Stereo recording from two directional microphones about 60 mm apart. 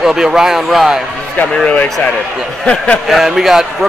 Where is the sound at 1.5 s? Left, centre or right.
Left.